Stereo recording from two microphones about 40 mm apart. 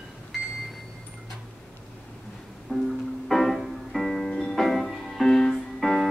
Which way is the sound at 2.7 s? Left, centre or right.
Left.